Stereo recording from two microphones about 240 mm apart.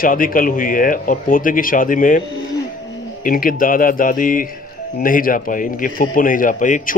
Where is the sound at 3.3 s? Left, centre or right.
Left.